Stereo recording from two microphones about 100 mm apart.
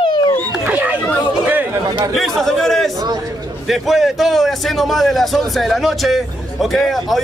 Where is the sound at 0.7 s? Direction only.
15° right (ahead or behind).